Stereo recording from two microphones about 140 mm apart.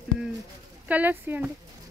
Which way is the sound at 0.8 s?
10° right (ahead or behind).